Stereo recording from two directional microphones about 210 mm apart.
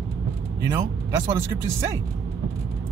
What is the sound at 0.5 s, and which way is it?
Speech, 15° right (ahead or behind).